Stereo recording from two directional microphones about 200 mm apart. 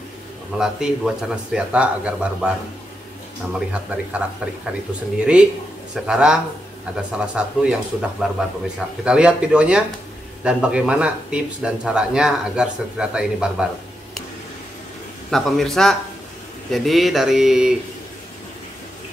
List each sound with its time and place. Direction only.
0.6 s speech: 5° right (ahead or behind)
3.5 s speech: 5° right (ahead or behind)
5.2 s speech: 5° right (ahead or behind)
15.3 s speech: centre (ahead or behind)